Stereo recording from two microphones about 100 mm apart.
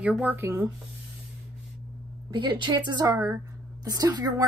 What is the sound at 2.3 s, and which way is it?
A woman's voice, 50° right (ahead or behind).